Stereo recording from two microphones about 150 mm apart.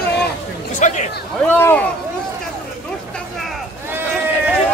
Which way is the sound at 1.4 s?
15° left (ahead or behind).